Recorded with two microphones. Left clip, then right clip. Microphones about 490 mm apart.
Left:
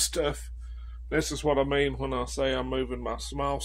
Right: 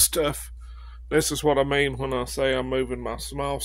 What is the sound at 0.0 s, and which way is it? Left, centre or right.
Speech, right.